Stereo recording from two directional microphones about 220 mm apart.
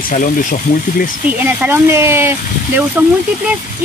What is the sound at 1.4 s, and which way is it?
Speech, 10° right (ahead or behind).